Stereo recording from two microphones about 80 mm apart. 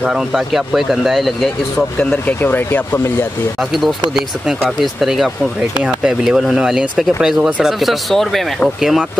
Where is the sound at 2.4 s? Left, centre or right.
Left.